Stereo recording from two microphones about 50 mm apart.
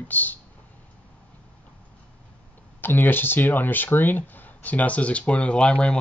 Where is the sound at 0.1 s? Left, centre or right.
Left.